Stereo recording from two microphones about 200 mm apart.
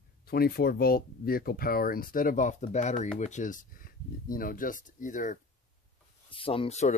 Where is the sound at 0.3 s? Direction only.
50° left (ahead or behind).